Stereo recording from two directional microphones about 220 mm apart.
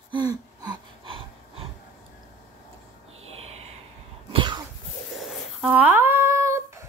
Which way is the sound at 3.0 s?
65° right (ahead or behind).